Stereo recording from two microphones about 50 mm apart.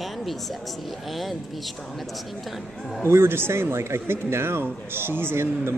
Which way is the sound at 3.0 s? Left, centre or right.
Right.